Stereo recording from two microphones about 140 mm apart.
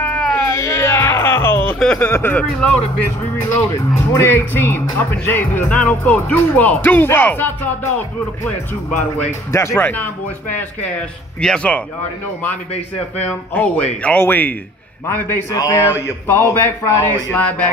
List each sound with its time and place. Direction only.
0.0 s a sound: 10° left (ahead or behind)
0.5 s music: 20° left (ahead or behind)
1.8 s speech: 10° left (ahead or behind)
4.1 s speech: 15° left (ahead or behind)
9.5 s speech: 20° left (ahead or behind)
11.4 s speech: 5° left (ahead or behind)
14.0 s speech: 15° left (ahead or behind)
15.5 s a sound: 20° left (ahead or behind)
16.6 s speech: 15° left (ahead or behind)